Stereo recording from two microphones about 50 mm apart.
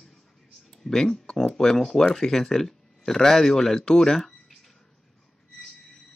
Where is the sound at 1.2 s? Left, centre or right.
Left.